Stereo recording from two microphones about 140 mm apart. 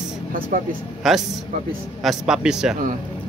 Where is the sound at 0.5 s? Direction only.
70° right (ahead or behind).